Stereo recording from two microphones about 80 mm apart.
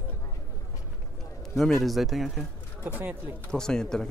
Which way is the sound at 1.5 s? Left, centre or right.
Centre.